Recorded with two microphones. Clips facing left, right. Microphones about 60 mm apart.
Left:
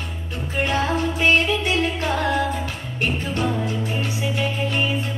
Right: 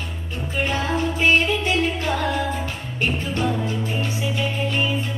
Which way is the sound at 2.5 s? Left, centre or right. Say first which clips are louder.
Even; right.